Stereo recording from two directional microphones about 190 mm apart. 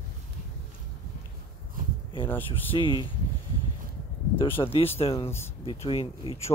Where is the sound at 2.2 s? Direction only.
10° left (ahead or behind).